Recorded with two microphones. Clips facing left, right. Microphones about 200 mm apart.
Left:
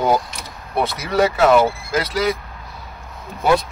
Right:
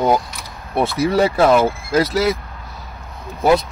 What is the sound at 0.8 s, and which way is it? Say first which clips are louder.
Speech: right 3 dB; 30° right (ahead or behind).